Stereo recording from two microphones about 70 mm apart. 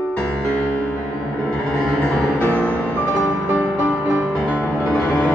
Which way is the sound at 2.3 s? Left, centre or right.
Left.